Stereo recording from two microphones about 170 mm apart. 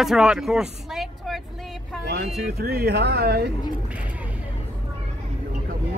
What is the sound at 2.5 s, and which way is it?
Speech, 65° right (ahead or behind).